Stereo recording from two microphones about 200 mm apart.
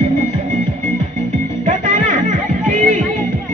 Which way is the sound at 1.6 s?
40° right (ahead or behind).